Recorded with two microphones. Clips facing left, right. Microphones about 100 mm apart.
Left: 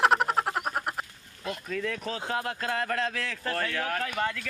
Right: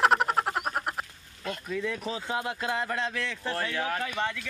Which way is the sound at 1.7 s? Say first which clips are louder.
Right 1 dB; 10° right (ahead or behind).